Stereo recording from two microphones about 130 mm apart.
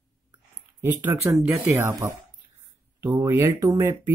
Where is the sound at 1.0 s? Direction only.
20° right (ahead or behind).